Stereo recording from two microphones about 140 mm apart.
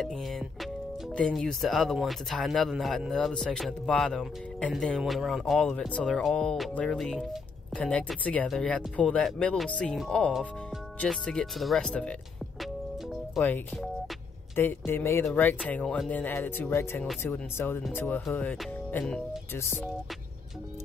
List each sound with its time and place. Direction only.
1.1 s speech: 5° left (ahead or behind)
13.4 s speech: centre (ahead or behind)
14.5 s speech: 15° left (ahead or behind)